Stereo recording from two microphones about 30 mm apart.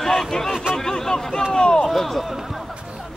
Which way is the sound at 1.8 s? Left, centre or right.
Centre.